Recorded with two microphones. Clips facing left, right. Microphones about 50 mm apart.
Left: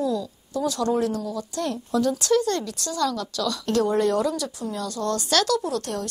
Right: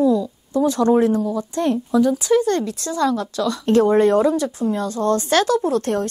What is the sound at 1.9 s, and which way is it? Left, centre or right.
Speech, centre.